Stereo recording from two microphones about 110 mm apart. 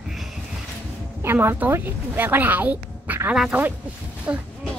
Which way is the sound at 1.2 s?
20° right (ahead or behind).